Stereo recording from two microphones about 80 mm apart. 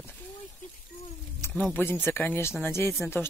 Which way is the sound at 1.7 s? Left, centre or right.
Left.